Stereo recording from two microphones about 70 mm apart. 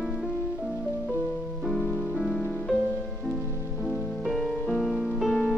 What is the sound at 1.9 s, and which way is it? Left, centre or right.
Music, centre.